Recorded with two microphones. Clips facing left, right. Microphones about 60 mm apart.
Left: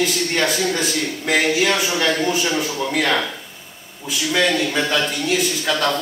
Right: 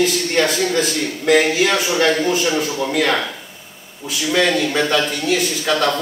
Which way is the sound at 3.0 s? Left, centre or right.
Right.